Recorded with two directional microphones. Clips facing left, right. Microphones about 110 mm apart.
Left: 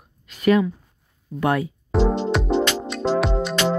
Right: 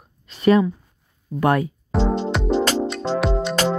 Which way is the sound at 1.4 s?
50° right (ahead or behind).